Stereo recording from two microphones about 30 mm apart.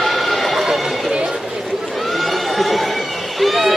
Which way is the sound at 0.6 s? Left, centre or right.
Centre.